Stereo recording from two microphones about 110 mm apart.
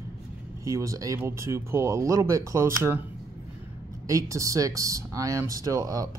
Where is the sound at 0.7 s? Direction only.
30° right (ahead or behind).